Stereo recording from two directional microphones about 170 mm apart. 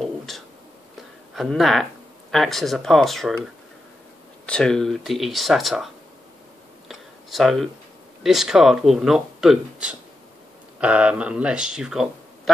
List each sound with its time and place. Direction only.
1.3 s speech: centre (ahead or behind)
4.5 s speech: 5° left (ahead or behind)
6.9 s a sound: centre (ahead or behind)
8.2 s speech: centre (ahead or behind)